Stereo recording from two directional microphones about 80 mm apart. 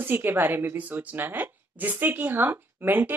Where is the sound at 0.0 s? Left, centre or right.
Right.